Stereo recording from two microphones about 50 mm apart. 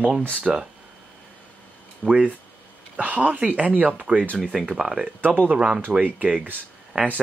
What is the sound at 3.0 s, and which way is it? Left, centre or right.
Speech, right.